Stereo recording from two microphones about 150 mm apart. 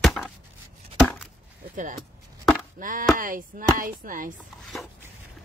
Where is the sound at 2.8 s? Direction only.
65° right (ahead or behind).